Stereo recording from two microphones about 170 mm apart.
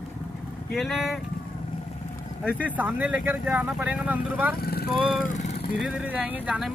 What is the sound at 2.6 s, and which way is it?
Speech, 10° right (ahead or behind).